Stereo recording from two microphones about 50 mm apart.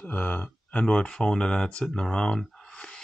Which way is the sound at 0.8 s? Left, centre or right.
Centre.